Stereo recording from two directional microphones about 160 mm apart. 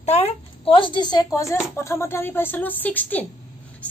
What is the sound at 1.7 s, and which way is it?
A woman's voice, 15° left (ahead or behind).